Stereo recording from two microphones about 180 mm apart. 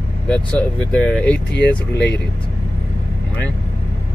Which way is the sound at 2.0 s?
70° left (ahead or behind).